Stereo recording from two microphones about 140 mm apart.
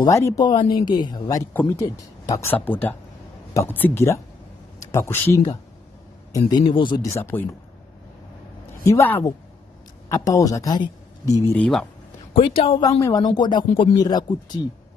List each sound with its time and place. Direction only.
0.1 s speech: 20° left (ahead or behind)
0.5 s speech: 35° left (ahead or behind)
1.2 s speech: 15° left (ahead or behind)
2.5 s speech: 10° left (ahead or behind)
6.6 s speech: 35° left (ahead or behind)
7.0 s speech: 20° left (ahead or behind)
8.8 s a man's voice: 15° left (ahead or behind)
11.5 s speech: 5° left (ahead or behind)
12.4 s speech: 40° left (ahead or behind)
13.0 s speech: 25° left (ahead or behind)